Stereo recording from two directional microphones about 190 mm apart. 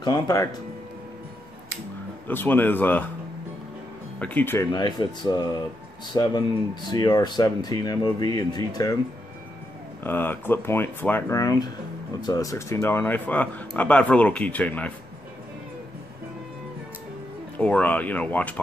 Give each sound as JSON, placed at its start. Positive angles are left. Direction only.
{"t": 0.0, "sound": "speech", "side_deg": 20}
{"t": 2.2, "sound": "speech", "side_deg": 10}
{"t": 4.2, "sound": "speech", "side_deg": 10}
{"t": 4.7, "sound": "speech", "side_deg": 20}
{"t": 10.0, "sound": "speech", "side_deg": 10}
{"t": 17.6, "sound": "speech", "side_deg": 5}